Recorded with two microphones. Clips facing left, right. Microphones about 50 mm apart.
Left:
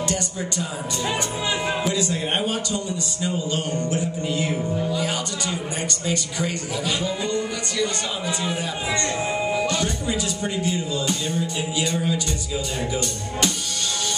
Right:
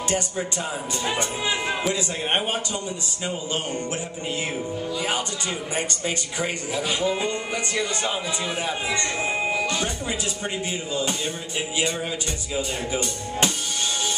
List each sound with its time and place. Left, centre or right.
0.1 s speech: right
6.0 s speech: right